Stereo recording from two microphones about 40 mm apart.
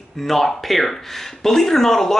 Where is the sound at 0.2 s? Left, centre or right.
Centre.